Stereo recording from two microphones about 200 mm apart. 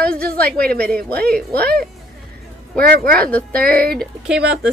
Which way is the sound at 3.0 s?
50° right (ahead or behind).